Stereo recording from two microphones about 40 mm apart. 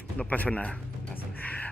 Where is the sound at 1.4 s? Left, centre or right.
Left.